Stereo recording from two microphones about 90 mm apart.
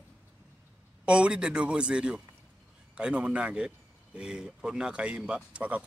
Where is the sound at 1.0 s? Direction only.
10° right (ahead or behind).